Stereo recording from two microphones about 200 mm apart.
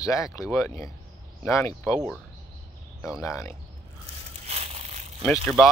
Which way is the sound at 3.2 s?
15° left (ahead or behind).